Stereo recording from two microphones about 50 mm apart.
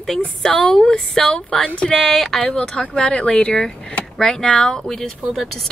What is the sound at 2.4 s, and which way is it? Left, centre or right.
Speech, centre.